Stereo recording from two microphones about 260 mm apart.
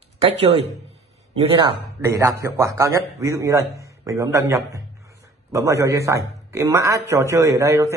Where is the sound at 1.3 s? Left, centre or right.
Right.